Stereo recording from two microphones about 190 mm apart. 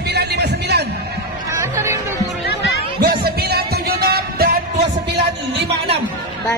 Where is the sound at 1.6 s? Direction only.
15° right (ahead or behind).